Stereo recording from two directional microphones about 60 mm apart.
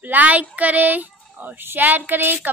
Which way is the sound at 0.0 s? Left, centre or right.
Right.